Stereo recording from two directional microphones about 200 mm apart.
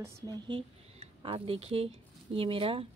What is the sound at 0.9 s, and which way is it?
Speech, 30° right (ahead or behind).